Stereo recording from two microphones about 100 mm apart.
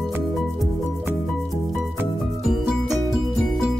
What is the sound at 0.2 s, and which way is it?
Music, centre (ahead or behind).